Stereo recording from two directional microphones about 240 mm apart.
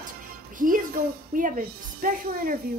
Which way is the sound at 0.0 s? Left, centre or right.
Right.